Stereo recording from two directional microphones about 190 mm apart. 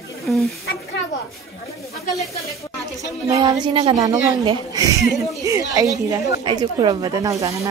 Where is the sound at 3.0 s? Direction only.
15° right (ahead or behind).